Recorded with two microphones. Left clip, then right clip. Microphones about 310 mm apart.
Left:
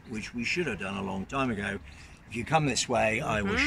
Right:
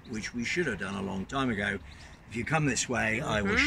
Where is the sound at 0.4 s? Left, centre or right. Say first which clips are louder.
Left 1 dB; centre.